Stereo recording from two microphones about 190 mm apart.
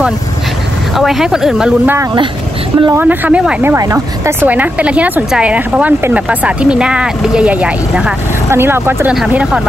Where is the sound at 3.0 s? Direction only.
10° right (ahead or behind).